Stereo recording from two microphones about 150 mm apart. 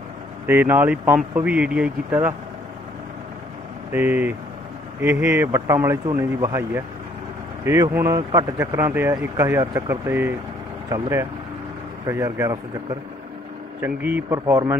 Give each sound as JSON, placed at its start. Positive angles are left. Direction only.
{"t": 0.5, "sound": "speech", "side_deg": -15}
{"t": 3.9, "sound": "speech", "side_deg": -10}
{"t": 13.7, "sound": "speech", "side_deg": -10}
{"t": 14.4, "sound": "speech", "side_deg": -25}